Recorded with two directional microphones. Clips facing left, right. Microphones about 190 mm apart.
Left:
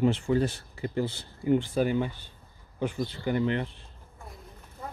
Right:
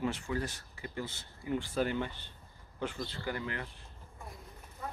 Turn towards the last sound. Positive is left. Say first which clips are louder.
# left 12 dB
turn(degrees=25)  # may be behind; listen again after turning